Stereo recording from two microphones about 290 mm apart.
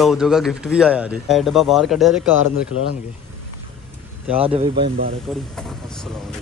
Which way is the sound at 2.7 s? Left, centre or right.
Left.